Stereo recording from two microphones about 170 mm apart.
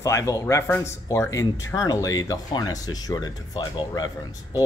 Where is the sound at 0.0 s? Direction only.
20° left (ahead or behind).